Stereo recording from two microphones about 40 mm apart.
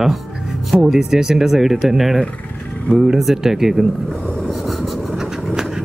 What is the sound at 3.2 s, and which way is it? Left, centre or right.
Speech, centre.